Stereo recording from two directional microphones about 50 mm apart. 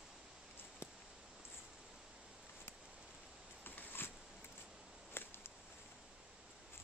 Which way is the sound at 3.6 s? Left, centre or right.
Left.